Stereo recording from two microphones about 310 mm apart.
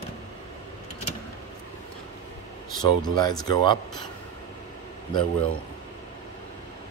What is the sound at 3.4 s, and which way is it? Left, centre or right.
Speech, centre.